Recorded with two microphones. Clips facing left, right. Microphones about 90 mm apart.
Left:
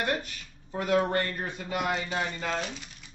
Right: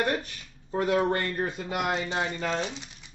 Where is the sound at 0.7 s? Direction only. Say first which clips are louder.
Right 2 dB; 30° right (ahead or behind).